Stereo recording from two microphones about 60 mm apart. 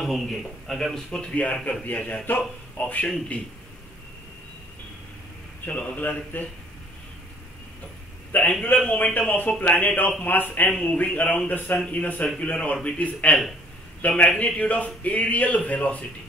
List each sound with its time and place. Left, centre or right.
0.0 s a man's voice: centre
1.3 s a man's voice: left
3.3 s a man's voice: left
5.7 s a man's voice: left
8.3 s a sound: left
8.6 s a man's voice: left